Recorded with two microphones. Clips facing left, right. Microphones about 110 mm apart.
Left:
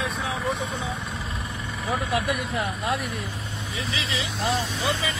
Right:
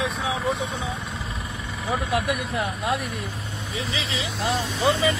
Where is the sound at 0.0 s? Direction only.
Centre (ahead or behind).